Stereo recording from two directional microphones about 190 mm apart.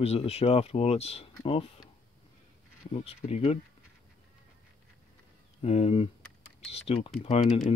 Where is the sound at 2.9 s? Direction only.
35° left (ahead or behind).